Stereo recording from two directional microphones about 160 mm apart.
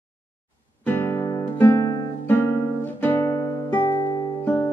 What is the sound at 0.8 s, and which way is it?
Music, 15° left (ahead or behind).